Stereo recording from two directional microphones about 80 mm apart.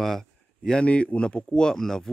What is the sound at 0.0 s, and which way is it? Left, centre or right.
Speech, centre.